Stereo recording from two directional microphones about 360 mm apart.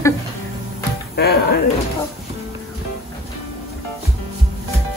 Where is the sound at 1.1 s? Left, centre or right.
Left.